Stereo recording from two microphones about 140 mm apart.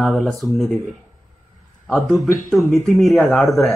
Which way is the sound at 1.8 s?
Centre (ahead or behind).